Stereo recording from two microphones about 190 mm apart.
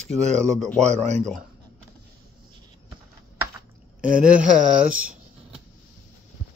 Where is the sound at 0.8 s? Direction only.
35° right (ahead or behind).